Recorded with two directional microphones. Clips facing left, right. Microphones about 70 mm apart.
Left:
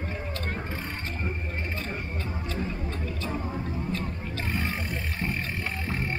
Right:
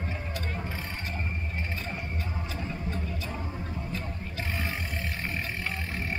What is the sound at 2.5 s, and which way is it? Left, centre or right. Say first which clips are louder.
Music: left 5 dB; centre.